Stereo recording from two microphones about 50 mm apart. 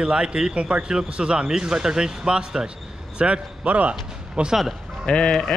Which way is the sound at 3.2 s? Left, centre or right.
Right.